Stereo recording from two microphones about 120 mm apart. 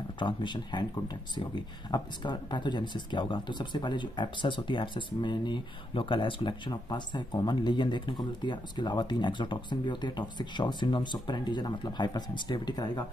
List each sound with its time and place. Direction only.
0.2 s speech: 40° left (ahead or behind)